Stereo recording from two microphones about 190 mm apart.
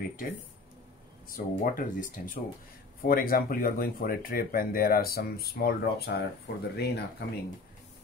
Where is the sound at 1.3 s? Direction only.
45° left (ahead or behind).